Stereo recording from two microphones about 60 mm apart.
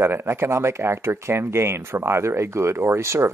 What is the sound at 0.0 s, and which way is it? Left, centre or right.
Speech, right.